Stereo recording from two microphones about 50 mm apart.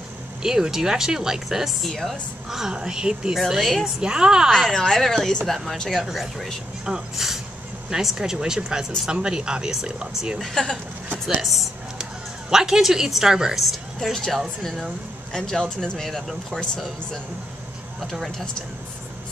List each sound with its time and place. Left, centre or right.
0.4 s speech: centre
1.8 s speech: centre
2.5 s speech: centre
3.3 s speech: centre
3.8 s speech: centre
4.5 s speech: centre
6.0 s speech: centre
10.4 s speech: centre